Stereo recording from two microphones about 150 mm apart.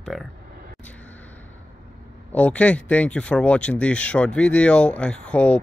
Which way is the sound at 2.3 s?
10° left (ahead or behind).